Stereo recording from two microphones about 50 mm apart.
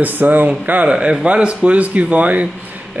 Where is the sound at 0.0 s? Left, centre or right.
Right.